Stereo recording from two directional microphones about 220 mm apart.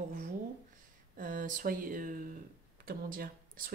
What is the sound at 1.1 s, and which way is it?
Speech, 40° right (ahead or behind).